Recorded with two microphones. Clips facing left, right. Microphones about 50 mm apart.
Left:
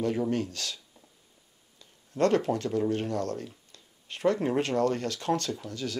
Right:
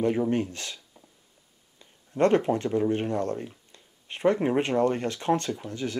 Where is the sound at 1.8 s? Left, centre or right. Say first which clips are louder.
Right 3 dB; right.